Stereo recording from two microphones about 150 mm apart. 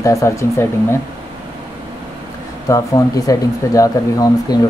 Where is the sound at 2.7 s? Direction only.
20° left (ahead or behind).